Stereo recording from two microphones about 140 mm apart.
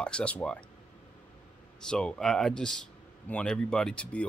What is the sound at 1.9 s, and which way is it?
Speech, 5° left (ahead or behind).